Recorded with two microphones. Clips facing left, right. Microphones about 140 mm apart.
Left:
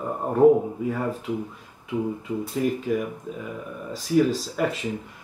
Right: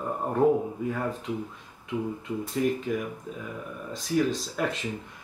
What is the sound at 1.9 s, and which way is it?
Speech, 15° left (ahead or behind).